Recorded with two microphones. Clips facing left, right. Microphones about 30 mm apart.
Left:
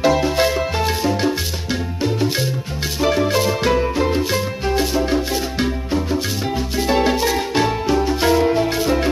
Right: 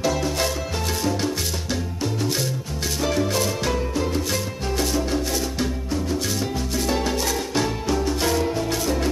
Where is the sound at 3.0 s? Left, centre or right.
Left.